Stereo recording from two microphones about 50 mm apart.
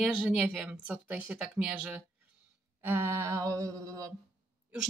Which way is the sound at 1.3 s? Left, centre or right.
Centre.